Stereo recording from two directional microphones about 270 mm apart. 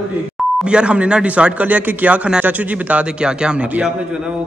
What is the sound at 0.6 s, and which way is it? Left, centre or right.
A man's voice, centre.